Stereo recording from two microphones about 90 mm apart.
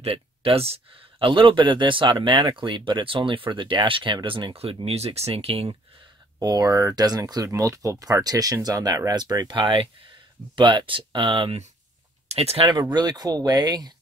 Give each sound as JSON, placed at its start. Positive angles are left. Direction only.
{"t": 0.0, "sound": "speech", "side_deg": -90}
{"t": 1.2, "sound": "speech", "side_deg": -75}
{"t": 6.4, "sound": "speech", "side_deg": -45}
{"t": 12.5, "sound": "speech", "side_deg": -60}
{"t": 12.9, "sound": "speech", "side_deg": -45}